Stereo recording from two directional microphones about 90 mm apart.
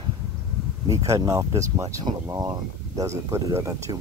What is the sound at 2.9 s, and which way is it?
Speech, 35° right (ahead or behind).